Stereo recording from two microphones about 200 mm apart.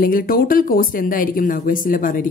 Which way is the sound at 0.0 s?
45° left (ahead or behind).